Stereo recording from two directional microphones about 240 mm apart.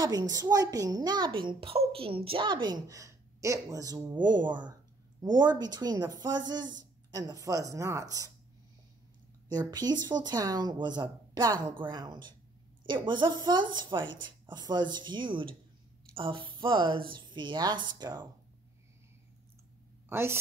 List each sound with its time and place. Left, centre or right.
0.0 s speech: centre
9.5 s speech: centre
20.1 s a woman's voice: centre